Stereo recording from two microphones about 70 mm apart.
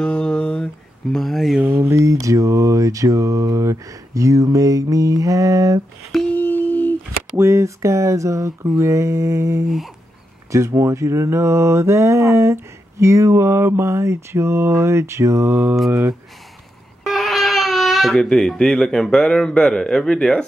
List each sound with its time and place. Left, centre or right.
0.0 s a sound: centre
1.1 s speech: centre
1.8 s mantra: right
6.3 s humming: left
7.3 s mantra: right
17.0 s speech: centre